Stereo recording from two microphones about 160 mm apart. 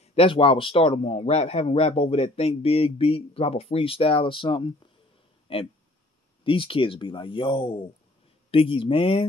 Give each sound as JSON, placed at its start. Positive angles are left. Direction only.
{"t": 0.0, "sound": "a man's voice", "side_deg": 40}